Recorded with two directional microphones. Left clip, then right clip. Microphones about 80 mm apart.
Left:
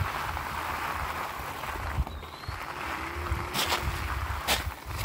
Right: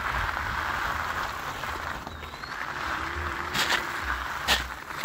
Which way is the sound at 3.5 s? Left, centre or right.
Centre.